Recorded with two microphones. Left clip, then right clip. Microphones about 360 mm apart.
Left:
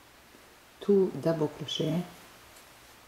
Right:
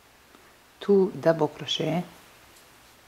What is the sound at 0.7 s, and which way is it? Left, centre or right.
Speech, centre.